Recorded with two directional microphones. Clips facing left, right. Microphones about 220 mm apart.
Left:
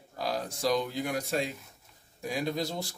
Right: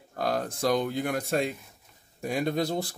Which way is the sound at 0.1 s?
55° right (ahead or behind).